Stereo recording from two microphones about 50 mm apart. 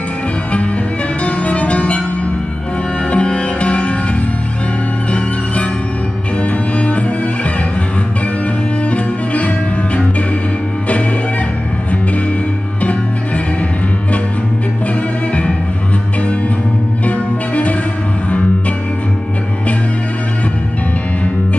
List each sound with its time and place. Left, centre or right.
1.2 s music: left
3.1 s music: left
6.4 s music: left
8.9 s music: left
17.0 s music: left